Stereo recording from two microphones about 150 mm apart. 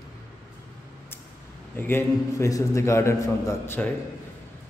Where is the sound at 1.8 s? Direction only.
15° left (ahead or behind).